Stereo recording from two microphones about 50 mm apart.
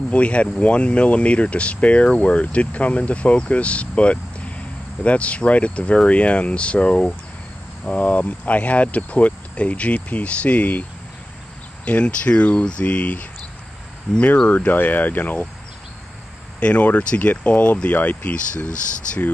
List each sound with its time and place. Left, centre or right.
0.1 s speech: left
16.5 s speech: left